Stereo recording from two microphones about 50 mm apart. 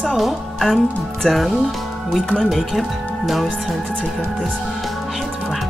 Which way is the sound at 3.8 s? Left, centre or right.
Centre.